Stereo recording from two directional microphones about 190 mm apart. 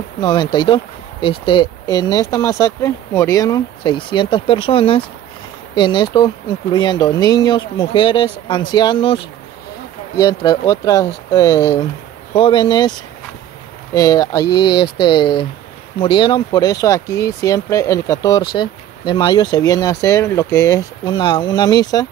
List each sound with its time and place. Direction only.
0.2 s speech: 25° left (ahead or behind)
13.9 s speech: 20° left (ahead or behind)